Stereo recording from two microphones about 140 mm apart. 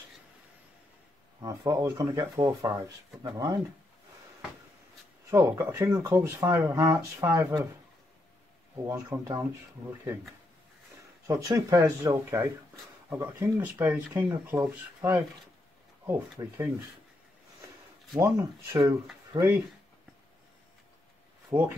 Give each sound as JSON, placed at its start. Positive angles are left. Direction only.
{"t": 1.4, "sound": "speech", "side_deg": -25}
{"t": 5.3, "sound": "speech", "side_deg": -20}
{"t": 8.8, "sound": "speech", "side_deg": -15}
{"t": 11.2, "sound": "speech", "side_deg": -20}
{"t": 18.1, "sound": "speech", "side_deg": -25}
{"t": 21.5, "sound": "speech", "side_deg": -25}